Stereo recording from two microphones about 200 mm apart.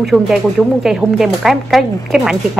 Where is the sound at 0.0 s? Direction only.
Centre (ahead or behind).